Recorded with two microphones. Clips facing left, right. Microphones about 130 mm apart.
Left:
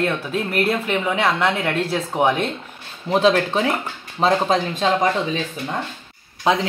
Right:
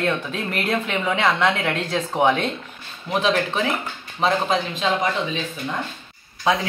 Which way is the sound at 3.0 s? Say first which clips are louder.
Left 4 dB; 35° left (ahead or behind).